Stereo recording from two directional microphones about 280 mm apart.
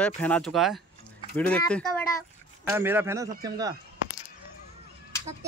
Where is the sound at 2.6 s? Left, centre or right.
Centre.